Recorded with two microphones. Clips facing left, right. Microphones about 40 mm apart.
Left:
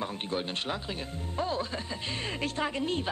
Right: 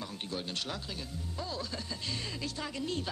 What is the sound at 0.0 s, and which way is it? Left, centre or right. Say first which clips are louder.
Speech: left 6 dB; left.